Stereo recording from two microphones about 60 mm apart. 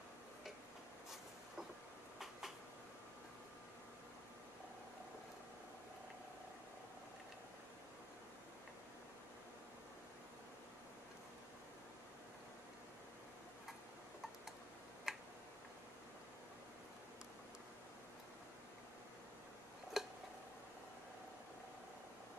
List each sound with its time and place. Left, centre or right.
15.1 s finger snapping: centre
19.9 s tick-tock: centre